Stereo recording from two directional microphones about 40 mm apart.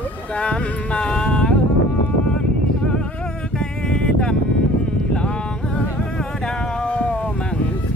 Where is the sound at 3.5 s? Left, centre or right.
Left.